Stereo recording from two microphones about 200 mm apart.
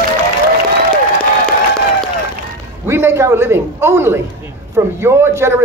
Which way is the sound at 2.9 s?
10° right (ahead or behind).